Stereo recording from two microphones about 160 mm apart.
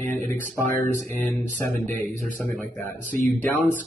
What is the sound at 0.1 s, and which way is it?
Speech, 55° right (ahead or behind).